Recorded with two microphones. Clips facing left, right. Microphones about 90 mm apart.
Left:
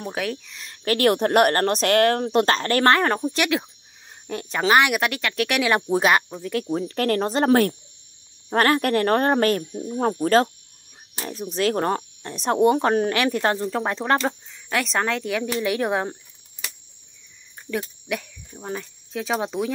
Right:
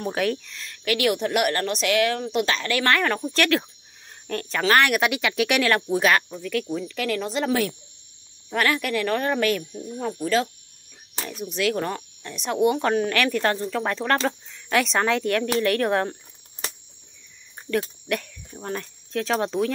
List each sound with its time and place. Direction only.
0.0 s speech: centre (ahead or behind)
0.8 s speech: 40° left (ahead or behind)
2.9 s speech: 30° left (ahead or behind)
3.3 s speech: 15° left (ahead or behind)
5.0 s speech: 5° right (ahead or behind)
5.8 s speech: 30° left (ahead or behind)
6.7 s speech: 45° left (ahead or behind)
10.2 s speech: 45° left (ahead or behind)
11.2 s speech: 35° left (ahead or behind)
13.1 s speech: 25° left (ahead or behind)
14.5 s a woman's voice: centre (ahead or behind)
17.6 s speech: 5° left (ahead or behind)